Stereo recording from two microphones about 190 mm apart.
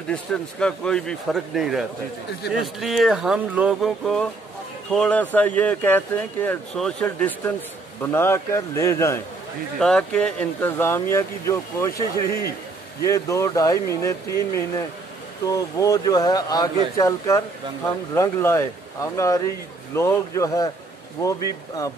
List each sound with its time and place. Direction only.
0.1 s speech: 5° left (ahead or behind)
9.8 s speech: 5° left (ahead or behind)
13.0 s speech: 15° left (ahead or behind)
15.4 s speech: 20° left (ahead or behind)